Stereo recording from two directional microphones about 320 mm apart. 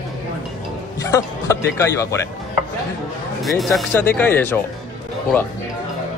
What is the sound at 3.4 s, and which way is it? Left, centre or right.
Speech, centre.